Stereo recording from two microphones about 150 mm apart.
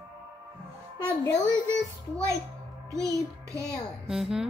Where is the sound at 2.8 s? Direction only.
20° right (ahead or behind).